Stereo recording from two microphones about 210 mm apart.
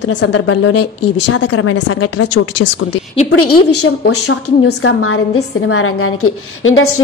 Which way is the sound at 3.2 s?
90° left.